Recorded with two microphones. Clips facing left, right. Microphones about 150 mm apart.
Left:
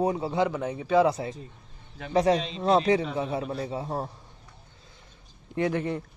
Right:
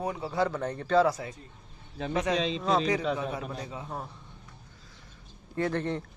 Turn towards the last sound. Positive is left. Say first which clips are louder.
# left 2 dB
turn(degrees=10)  # may be behind; listen again after turning